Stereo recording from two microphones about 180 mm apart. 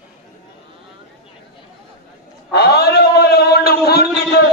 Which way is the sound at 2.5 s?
60° left (ahead or behind).